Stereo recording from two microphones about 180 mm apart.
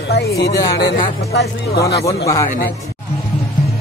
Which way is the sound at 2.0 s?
20° left (ahead or behind).